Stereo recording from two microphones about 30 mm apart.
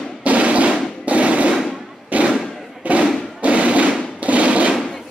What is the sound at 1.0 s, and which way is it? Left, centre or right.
Fireworks, right.